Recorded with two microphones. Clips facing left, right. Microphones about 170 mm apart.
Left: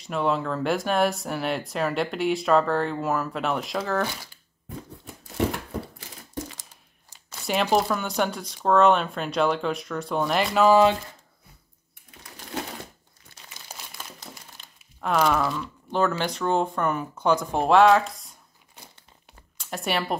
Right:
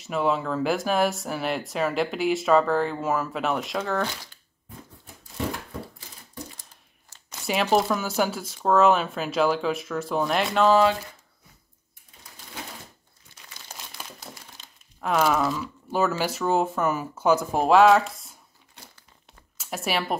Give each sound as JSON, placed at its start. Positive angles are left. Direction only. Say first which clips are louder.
{"t": 0.0, "sound": "speech", "louder": "even", "side_deg": 0}
{"t": 5.9, "sound": "a sound", "louder": "left 5 dB", "side_deg": 90}
{"t": 7.4, "sound": "speech", "louder": "even", "side_deg": 0}
{"t": 14.8, "sound": "speech", "louder": "even", "side_deg": 0}
{"t": 19.5, "sound": "speech", "louder": "even", "side_deg": -5}